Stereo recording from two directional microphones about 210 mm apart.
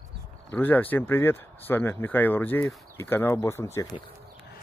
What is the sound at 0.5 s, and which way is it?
Speech, 10° left (ahead or behind).